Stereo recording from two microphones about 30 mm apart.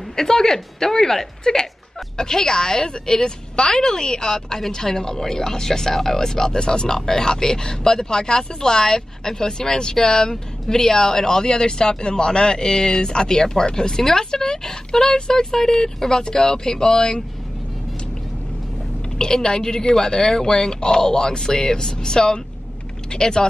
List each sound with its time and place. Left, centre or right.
0.1 s a woman's voice: centre
19.1 s a woman's voice: centre